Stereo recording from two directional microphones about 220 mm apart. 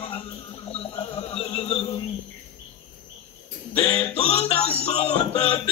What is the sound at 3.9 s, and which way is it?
Music, 30° left (ahead or behind).